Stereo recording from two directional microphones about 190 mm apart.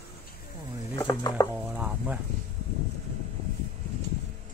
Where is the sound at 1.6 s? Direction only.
10° right (ahead or behind).